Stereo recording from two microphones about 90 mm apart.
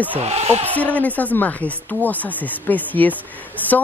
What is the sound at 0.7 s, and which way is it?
Speech, 15° left (ahead or behind).